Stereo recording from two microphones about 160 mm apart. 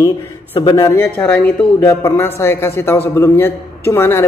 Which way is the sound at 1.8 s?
15° left (ahead or behind).